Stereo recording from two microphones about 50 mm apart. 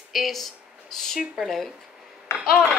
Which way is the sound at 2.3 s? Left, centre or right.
Left.